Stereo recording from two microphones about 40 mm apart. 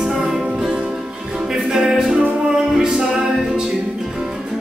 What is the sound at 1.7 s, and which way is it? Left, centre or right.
Music, centre.